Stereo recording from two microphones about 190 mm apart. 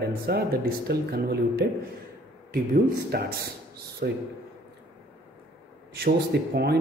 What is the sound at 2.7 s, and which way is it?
Speech, 55° right (ahead or behind).